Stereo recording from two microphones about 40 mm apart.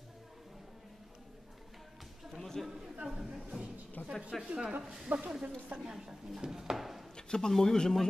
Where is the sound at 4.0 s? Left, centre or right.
Left.